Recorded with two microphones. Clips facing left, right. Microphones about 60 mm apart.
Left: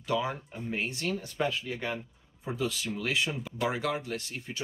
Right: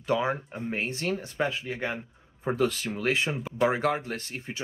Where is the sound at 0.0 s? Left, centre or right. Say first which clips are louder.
Right 4 dB; right.